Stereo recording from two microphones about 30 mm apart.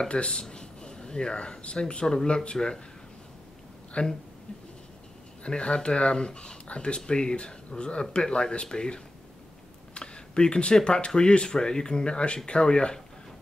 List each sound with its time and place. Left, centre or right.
0.1 s speech: left
0.4 s speech: left
4.0 s speech: left
5.4 s speech: left